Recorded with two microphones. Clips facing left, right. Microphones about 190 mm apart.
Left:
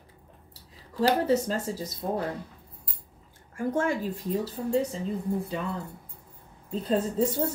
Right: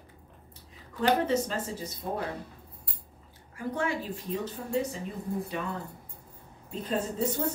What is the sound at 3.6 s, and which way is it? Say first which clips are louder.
Speech: left 4 dB; 50° left (ahead or behind).